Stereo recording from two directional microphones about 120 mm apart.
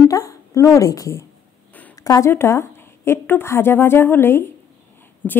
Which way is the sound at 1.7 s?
15° left (ahead or behind).